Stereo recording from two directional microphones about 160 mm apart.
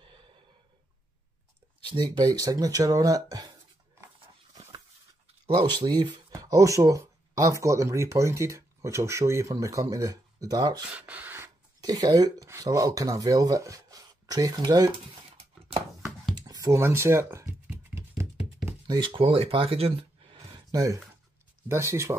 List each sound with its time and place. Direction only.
1.9 s speech: 30° right (ahead or behind)
5.6 s speech: 30° right (ahead or behind)
10.9 s speech: 10° right (ahead or behind); by 15.8 s 35° right (ahead or behind)
16.3 s a sound: 25° right (ahead or behind)
18.7 s a sound: 25° right (ahead or behind)
20.7 s speech: 20° right (ahead or behind)